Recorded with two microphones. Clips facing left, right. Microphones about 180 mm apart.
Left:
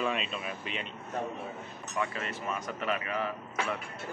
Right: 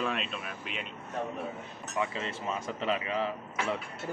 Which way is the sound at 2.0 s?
25° right (ahead or behind).